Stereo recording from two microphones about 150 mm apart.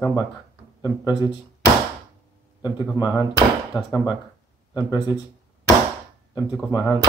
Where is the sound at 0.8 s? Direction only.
30° left (ahead or behind).